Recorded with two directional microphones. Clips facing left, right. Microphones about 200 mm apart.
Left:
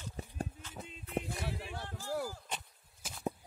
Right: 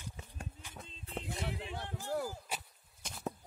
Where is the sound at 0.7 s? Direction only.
5° left (ahead or behind).